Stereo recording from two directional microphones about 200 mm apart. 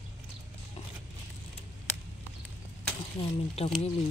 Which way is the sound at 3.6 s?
30° left (ahead or behind).